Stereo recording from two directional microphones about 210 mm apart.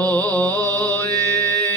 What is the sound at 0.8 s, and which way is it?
Mantra, 10° left (ahead or behind).